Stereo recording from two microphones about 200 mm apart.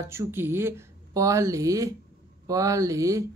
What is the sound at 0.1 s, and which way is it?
Speech, 10° right (ahead or behind).